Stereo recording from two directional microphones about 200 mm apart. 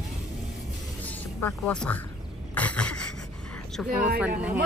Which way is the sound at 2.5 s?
5° left (ahead or behind).